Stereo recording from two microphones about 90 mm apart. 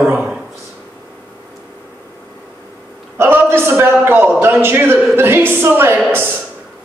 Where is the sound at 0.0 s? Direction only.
25° right (ahead or behind).